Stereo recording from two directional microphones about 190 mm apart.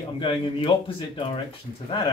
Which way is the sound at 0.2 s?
25° left (ahead or behind).